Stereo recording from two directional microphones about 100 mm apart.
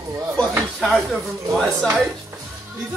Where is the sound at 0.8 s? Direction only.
Centre (ahead or behind).